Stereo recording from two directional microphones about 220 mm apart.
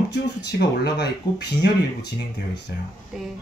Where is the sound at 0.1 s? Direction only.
50° left (ahead or behind).